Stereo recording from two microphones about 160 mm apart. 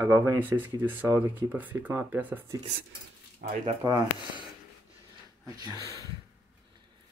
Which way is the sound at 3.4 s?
70° right (ahead or behind).